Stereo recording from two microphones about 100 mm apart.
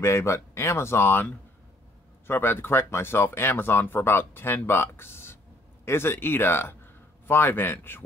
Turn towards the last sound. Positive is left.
turn(degrees=20)  # may be behind; listen again after turning